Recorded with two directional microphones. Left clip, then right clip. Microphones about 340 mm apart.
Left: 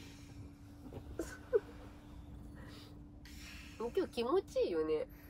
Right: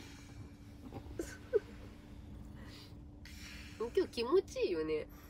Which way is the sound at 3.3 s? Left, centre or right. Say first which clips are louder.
Right 3 dB; centre.